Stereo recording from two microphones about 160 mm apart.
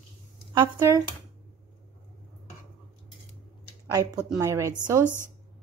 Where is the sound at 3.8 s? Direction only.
20° right (ahead or behind).